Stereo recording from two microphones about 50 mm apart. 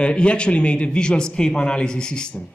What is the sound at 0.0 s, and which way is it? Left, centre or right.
A man's voice, left.